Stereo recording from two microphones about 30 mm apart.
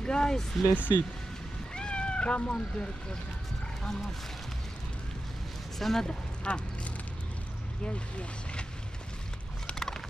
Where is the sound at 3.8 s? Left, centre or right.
Centre.